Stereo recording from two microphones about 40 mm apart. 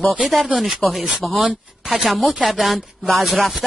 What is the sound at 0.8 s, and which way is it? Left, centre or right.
Speech, centre.